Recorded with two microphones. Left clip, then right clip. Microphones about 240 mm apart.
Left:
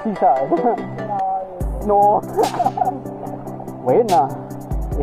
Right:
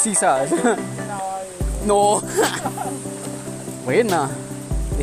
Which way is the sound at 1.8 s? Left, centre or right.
Right.